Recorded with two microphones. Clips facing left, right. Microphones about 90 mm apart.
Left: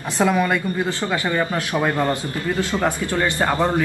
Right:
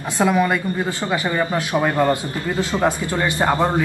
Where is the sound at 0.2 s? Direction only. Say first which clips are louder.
Right 1 dB; 15° right (ahead or behind).